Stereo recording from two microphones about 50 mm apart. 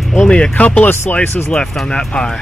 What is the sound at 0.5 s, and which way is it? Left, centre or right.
Speech, left.